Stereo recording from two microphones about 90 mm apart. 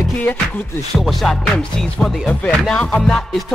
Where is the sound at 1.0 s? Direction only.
5° left (ahead or behind).